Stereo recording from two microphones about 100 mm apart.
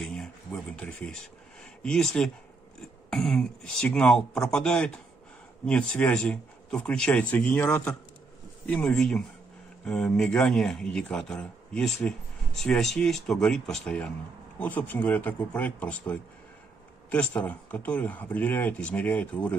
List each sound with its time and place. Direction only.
0.0 s a sound: centre (ahead or behind)
0.5 s speech: 10° left (ahead or behind)
14.6 s speech: 20° left (ahead or behind)